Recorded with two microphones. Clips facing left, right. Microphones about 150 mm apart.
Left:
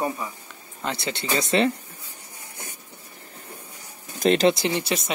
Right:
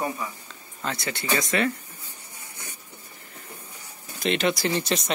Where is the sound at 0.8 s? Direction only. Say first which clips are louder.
Left 2 dB; 20° left (ahead or behind).